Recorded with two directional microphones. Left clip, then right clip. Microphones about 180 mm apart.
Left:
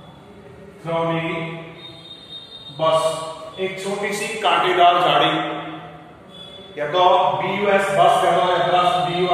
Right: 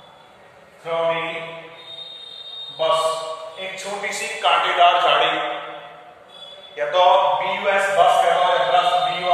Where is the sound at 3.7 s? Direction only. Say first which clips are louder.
Even; centre (ahead or behind).